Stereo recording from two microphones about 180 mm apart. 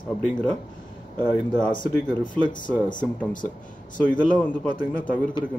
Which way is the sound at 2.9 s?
45° left (ahead or behind).